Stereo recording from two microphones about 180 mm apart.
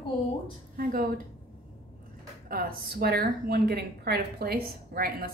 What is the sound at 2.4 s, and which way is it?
Speech, 55° right (ahead or behind).